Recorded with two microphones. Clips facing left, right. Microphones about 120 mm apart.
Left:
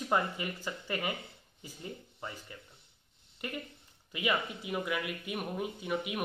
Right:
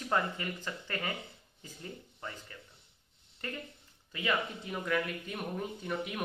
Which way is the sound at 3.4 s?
15° left (ahead or behind).